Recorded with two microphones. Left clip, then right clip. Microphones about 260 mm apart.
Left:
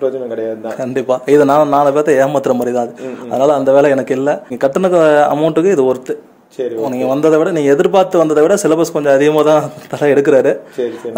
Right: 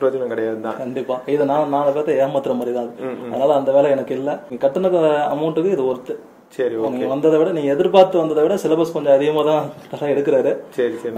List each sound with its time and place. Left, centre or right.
0.9 s speech: left
7.0 s speech: left